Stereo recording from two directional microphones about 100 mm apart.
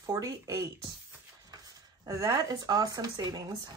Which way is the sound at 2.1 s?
35° right (ahead or behind).